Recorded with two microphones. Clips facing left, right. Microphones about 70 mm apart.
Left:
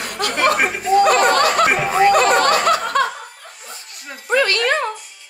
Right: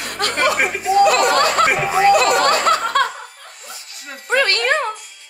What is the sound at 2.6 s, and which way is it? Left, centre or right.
Snicker, right.